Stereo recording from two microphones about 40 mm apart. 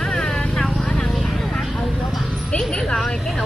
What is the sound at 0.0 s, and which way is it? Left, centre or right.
Vehicle, centre.